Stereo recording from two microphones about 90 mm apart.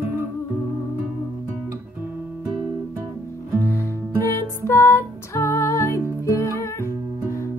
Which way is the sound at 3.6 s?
30° left (ahead or behind).